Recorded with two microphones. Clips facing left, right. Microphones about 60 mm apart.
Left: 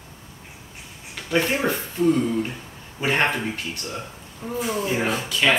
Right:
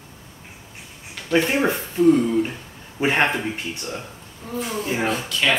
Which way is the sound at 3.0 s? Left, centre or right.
Centre.